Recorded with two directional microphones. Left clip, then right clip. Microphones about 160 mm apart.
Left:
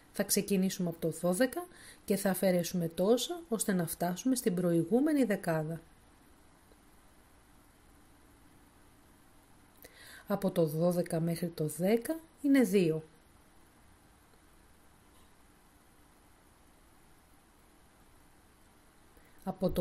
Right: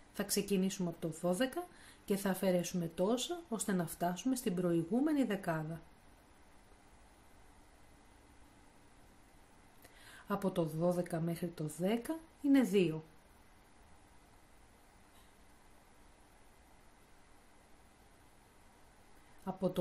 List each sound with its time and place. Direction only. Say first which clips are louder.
0.1 s speech: left 4 dB; 35° left (ahead or behind)
10.2 s speech: left 5 dB; 35° left (ahead or behind)
19.4 s a sound: left 4 dB; 35° left (ahead or behind)